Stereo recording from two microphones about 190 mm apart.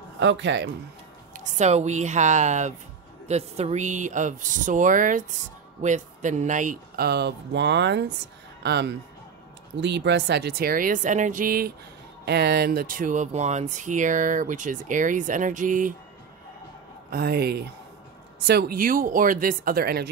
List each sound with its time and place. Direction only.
0.2 s a man's voice: 70° right (ahead or behind)
1.3 s speech: 40° right (ahead or behind)
7.1 s speech: 60° right (ahead or behind)
12.3 s speech: 60° right (ahead or behind); by 15.9 s 45° right (ahead or behind)
17.1 s speech: 55° right (ahead or behind)